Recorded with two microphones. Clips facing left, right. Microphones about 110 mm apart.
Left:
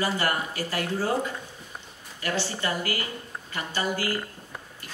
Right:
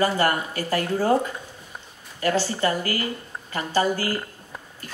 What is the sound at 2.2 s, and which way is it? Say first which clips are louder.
Speech: right 7 dB; 40° right (ahead or behind).